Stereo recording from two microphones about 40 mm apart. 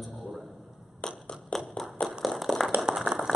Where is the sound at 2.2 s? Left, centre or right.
Centre.